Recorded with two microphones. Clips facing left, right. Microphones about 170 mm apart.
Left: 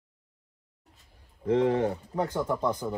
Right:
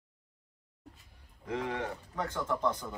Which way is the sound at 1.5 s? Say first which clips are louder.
Left 11 dB; 35° left (ahead or behind).